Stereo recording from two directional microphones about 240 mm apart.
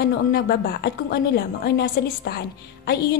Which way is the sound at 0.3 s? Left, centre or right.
Left.